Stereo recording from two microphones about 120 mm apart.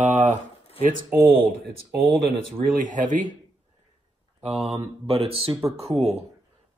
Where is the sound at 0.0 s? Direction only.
90° right.